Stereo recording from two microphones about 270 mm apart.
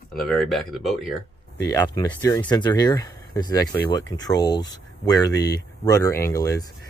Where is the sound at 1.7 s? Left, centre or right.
Centre.